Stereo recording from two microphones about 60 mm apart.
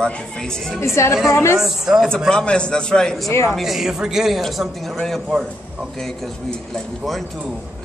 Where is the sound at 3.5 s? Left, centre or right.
Centre.